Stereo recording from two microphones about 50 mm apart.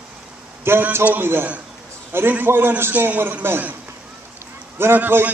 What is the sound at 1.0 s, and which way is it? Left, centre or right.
Speech, right.